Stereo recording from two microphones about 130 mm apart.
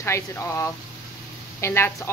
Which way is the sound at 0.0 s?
20° left (ahead or behind).